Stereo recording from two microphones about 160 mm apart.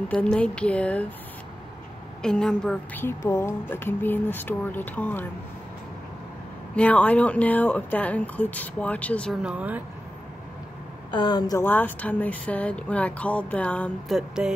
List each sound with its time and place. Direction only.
0.1 s a woman's voice: 5° left (ahead or behind)
2.2 s a woman's voice: 5° left (ahead or behind)
6.7 s a woman's voice: 10° left (ahead or behind)
9.4 s speech: 10° right (ahead or behind)
11.1 s a woman's voice: 30° left (ahead or behind)
11.6 s a woman's voice: 10° left (ahead or behind)